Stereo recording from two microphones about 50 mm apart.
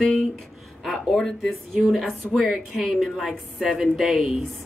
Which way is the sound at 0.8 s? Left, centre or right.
Centre.